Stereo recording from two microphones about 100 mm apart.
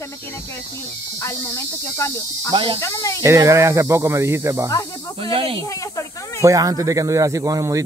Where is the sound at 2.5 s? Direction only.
55° right (ahead or behind).